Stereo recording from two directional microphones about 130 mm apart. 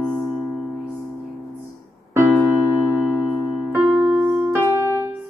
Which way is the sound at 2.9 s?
10° left (ahead or behind).